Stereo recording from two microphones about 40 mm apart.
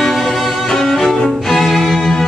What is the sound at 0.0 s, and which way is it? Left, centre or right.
Music, centre.